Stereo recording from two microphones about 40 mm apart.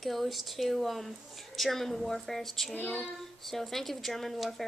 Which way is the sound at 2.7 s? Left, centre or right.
Left.